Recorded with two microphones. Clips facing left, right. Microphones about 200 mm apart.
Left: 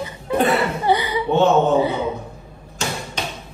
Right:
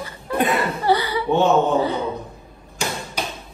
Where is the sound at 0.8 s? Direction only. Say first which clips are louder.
Even; 15° left (ahead or behind).